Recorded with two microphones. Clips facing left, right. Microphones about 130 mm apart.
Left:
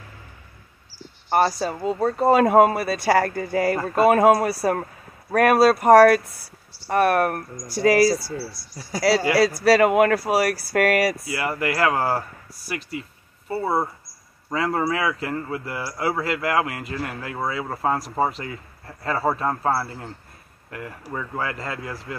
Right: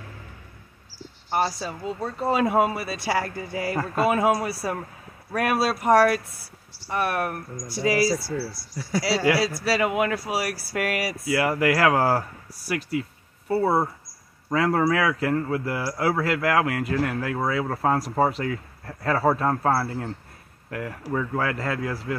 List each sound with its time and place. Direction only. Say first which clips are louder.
1.3 s speech: left 5 dB; 50° left (ahead or behind)
8.4 s speech: right 2 dB; 30° left (ahead or behind)
9.6 s speech: left 7 dB; 50° left (ahead or behind)
11.2 s a man's voice: right 4 dB; 5° right (ahead or behind)